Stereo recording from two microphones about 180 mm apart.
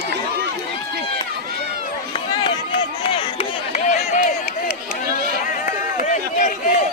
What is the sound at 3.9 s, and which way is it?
Run, 40° left (ahead or behind).